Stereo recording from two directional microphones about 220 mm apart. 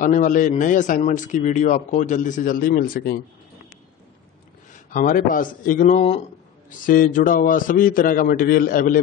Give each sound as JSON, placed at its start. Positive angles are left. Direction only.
{"t": 0.0, "sound": "a man's voice", "side_deg": 35}
{"t": 4.9, "sound": "a man's voice", "side_deg": 40}